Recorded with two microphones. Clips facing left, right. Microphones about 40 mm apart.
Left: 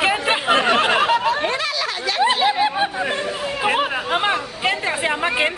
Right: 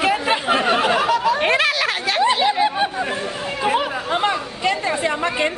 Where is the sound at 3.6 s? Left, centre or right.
Left.